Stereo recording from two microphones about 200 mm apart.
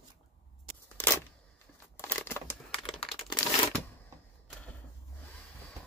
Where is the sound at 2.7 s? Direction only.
25° left (ahead or behind).